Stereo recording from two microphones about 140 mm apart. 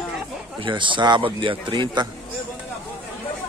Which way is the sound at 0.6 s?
35° right (ahead or behind).